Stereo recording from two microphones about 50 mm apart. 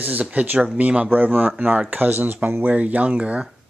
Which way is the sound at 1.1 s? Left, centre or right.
Right.